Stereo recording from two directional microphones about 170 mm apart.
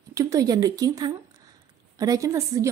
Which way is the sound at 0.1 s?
20° right (ahead or behind).